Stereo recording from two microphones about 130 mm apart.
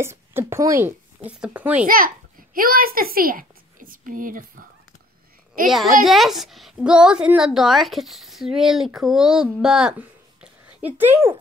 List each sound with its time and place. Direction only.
0.0 s speech: 20° right (ahead or behind)
1.2 s speech: 10° right (ahead or behind)
2.5 s a woman's voice: 90° right
5.7 s a woman's voice: centre (ahead or behind); by 11.3 s 15° right (ahead or behind)